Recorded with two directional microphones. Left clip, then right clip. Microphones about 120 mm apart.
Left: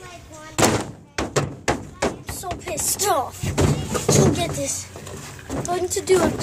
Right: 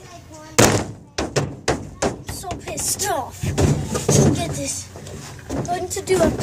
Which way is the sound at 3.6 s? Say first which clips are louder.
Even; 35° right (ahead or behind).